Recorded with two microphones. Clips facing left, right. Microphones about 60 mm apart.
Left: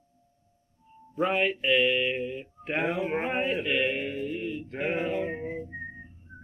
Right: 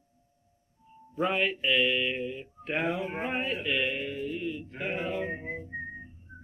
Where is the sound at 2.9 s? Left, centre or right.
Left.